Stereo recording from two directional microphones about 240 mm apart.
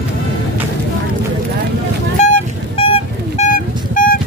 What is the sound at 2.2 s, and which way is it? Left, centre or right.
Vehicle, left.